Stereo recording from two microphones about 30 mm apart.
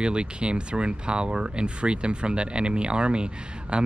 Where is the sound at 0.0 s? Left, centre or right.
Right.